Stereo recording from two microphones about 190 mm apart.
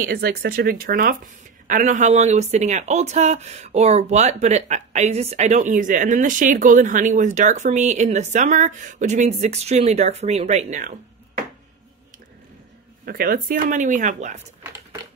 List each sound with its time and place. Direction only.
0.0 s speech: 55° right (ahead or behind); by 10.9 s 40° right (ahead or behind)
13.0 s speech: 50° right (ahead or behind)